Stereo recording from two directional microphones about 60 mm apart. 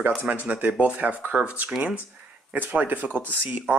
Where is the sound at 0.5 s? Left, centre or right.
Right.